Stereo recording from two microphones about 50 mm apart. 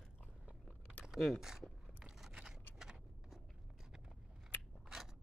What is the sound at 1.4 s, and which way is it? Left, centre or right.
Speech, centre.